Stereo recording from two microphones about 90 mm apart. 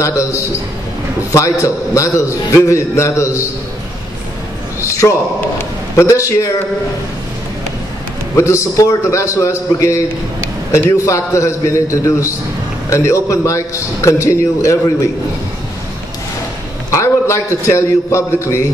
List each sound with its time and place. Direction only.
0.0 s a man's voice: 35° left (ahead or behind)
5.0 s a man's voice: 30° left (ahead or behind)
8.4 s a man's voice: 35° left (ahead or behind)
16.9 s a man's voice: 35° left (ahead or behind)